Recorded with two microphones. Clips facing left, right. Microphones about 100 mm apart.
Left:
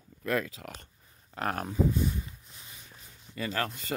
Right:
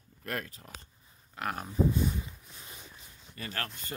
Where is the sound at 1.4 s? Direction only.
40° left (ahead or behind).